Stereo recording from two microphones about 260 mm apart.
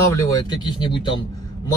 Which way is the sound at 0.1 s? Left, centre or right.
Centre.